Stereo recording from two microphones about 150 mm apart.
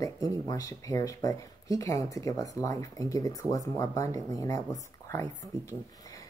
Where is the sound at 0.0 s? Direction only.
25° left (ahead or behind).